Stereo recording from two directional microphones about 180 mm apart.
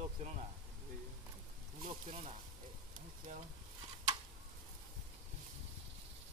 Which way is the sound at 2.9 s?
50° right (ahead or behind).